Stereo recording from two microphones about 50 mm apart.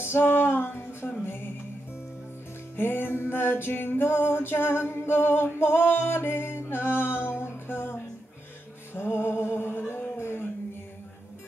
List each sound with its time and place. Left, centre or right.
0.0 s music: left
2.7 s music: left
10.1 s a sound: left